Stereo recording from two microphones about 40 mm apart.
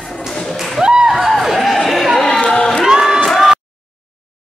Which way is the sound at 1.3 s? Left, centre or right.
Centre.